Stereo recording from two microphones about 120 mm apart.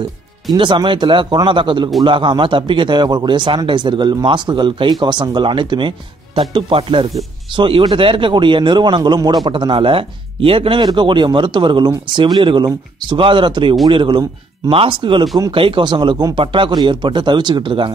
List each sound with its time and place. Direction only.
0.6 s a man's voice: 40° right (ahead or behind)